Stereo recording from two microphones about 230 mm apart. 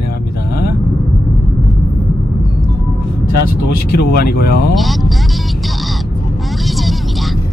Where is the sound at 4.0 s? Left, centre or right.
Left.